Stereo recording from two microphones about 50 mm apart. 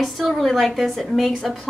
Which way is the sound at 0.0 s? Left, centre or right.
Centre.